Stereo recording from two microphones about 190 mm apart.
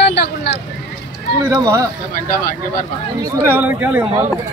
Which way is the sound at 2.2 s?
50° left (ahead or behind).